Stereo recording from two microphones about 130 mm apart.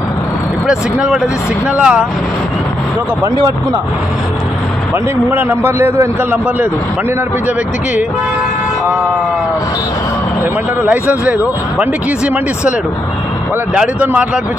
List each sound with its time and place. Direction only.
0.7 s a man's voice: 5° right (ahead or behind)
4.9 s a man's voice: 15° right (ahead or behind)
10.4 s a man's voice: 10° right (ahead or behind)
13.7 s a man's voice: 10° right (ahead or behind)